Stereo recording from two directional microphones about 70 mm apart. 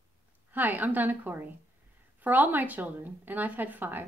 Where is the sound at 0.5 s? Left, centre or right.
Right.